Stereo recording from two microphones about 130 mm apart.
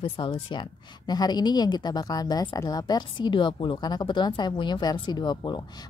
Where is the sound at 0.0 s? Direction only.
40° left (ahead or behind).